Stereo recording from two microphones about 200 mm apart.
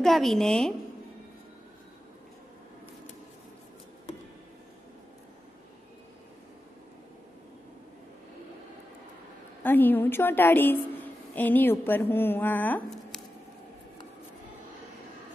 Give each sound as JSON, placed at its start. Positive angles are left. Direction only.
{"t": 0.0, "sound": "a woman's voice", "side_deg": 0}
{"t": 9.6, "sound": "a woman's voice", "side_deg": 10}